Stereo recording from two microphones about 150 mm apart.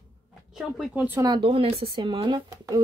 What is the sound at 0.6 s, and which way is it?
Speech, centre (ahead or behind).